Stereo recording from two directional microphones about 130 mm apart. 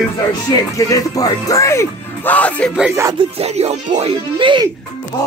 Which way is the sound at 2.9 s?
20° right (ahead or behind).